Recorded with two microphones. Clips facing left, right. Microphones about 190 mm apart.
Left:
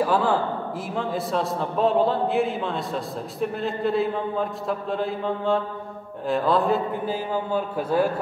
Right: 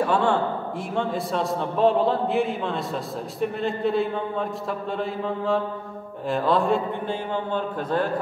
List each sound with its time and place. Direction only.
0.0 s a man's voice: centre (ahead or behind)